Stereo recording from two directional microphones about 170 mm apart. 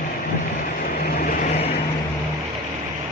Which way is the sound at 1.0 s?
60° left (ahead or behind).